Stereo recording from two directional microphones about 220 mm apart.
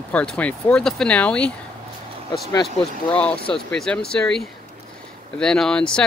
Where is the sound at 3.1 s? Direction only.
5° left (ahead or behind).